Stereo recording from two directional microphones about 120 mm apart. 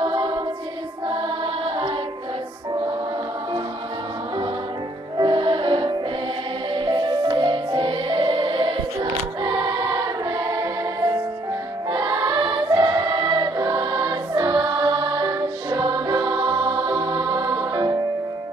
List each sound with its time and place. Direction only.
0.0 s choir: 40° right (ahead or behind)
5.1 s music: 40° right (ahead or behind)
11.9 s choir: 30° right (ahead or behind)